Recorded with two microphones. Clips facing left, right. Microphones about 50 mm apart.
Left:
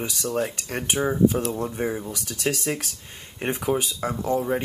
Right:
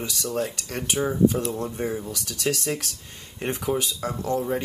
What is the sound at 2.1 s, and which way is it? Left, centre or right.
Speech, left.